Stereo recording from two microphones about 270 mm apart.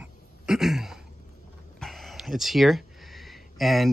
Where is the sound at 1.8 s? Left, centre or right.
Centre.